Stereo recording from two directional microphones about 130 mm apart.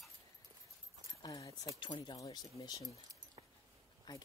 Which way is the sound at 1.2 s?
30° left (ahead or behind).